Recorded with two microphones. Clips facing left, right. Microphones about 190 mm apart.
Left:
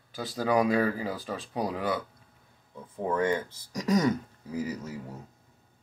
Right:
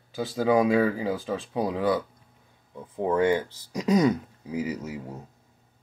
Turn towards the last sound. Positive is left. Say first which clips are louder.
# right 3 dB
turn(degrees=-10)  # may be behind; listen again after turning